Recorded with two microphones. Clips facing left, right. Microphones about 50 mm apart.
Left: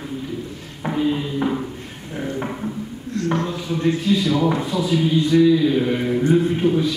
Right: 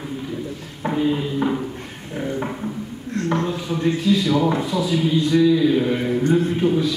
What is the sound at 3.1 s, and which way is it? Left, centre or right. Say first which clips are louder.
Speech: even; right.